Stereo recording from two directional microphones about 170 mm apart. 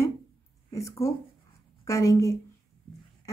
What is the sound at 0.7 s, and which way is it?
A woman's voice, 15° left (ahead or behind).